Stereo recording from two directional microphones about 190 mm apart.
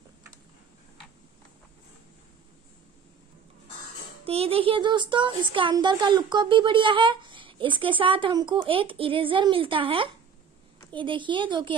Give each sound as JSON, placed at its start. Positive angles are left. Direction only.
{"t": 4.2, "sound": "speech", "side_deg": -30}